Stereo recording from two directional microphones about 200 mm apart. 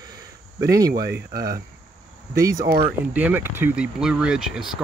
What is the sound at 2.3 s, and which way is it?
Speech, 15° right (ahead or behind).